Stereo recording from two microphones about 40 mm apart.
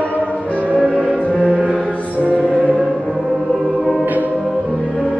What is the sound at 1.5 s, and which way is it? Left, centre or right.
Music, right.